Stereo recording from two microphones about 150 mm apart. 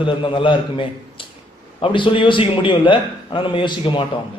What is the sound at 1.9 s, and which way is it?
A man's voice, 35° left (ahead or behind).